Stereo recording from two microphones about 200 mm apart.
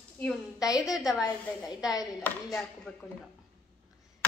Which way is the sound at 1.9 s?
20° left (ahead or behind).